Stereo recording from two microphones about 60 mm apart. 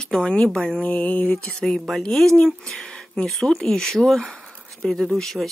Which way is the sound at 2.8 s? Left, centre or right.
Centre.